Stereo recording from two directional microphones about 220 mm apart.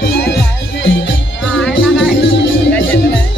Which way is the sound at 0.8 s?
60° left (ahead or behind).